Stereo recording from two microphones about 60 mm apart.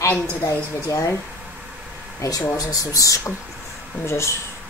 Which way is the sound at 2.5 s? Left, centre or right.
Left.